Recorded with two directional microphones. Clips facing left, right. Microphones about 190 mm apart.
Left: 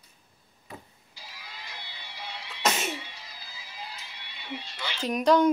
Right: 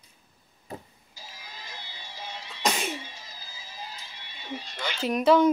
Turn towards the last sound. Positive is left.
turn(degrees=-5)  # may be behind; listen again after turning